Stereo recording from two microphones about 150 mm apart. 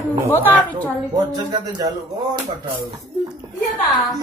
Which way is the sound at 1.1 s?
25° right (ahead or behind).